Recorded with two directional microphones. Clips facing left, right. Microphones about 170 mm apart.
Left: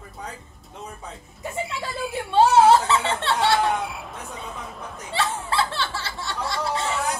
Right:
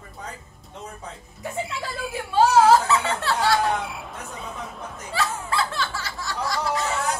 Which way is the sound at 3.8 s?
Centre (ahead or behind).